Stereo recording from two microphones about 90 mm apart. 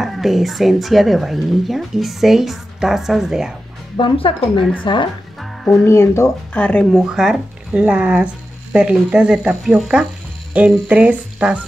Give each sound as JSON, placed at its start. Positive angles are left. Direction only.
{"t": 0.0, "sound": "speech", "side_deg": 0}
{"t": 3.9, "sound": "speech", "side_deg": 75}
{"t": 4.9, "sound": "speech", "side_deg": 65}
{"t": 5.4, "sound": "music", "side_deg": 0}
{"t": 5.9, "sound": "speech", "side_deg": 30}
{"t": 6.5, "sound": "speech", "side_deg": 15}
{"t": 6.9, "sound": "speech", "side_deg": -5}